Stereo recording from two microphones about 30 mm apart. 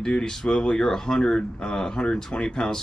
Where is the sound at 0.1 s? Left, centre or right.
Left.